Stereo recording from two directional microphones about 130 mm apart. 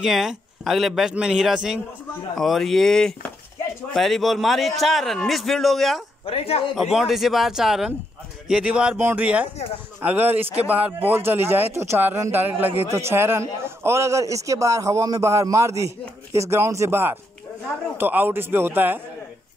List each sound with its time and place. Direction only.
0.0 s a man's voice: 5° right (ahead or behind)
6.2 s speech: 50° left (ahead or behind)
6.7 s a man's voice: centre (ahead or behind)